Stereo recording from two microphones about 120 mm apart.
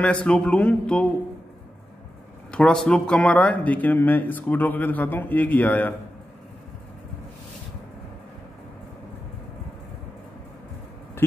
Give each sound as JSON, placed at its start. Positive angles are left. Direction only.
{"t": 0.0, "sound": "speech", "side_deg": 10}
{"t": 2.5, "sound": "speech", "side_deg": 5}
{"t": 11.2, "sound": "a sound", "side_deg": 20}